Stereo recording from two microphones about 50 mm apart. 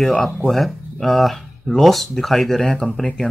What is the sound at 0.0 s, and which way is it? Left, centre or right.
Speech, centre.